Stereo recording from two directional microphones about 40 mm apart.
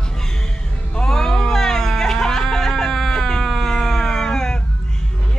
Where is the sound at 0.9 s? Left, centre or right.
Centre.